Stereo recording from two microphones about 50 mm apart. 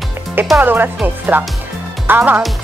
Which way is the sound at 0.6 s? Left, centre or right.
Right.